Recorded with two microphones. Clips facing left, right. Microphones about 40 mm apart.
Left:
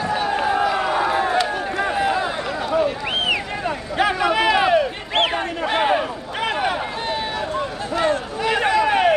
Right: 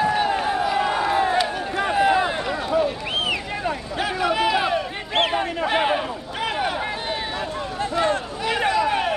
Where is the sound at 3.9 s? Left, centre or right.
Left.